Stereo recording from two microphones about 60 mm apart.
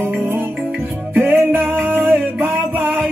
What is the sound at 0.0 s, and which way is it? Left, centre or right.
Music, right.